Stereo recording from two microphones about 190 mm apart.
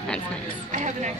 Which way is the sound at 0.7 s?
40° right (ahead or behind).